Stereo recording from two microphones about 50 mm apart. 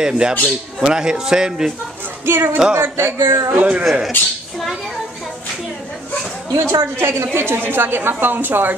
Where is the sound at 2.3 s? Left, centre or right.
Right.